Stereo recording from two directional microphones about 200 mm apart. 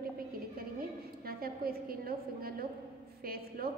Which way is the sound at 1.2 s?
50° right (ahead or behind).